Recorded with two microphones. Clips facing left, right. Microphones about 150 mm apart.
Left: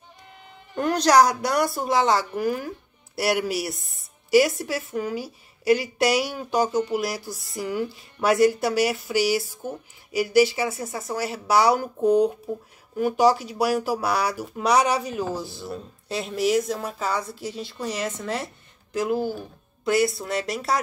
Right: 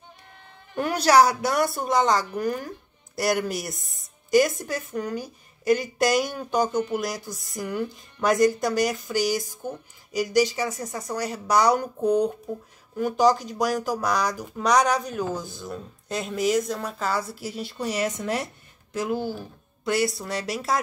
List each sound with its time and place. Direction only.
0.7 s a woman's voice: 5° right (ahead or behind)
18.9 s a woman's voice: centre (ahead or behind)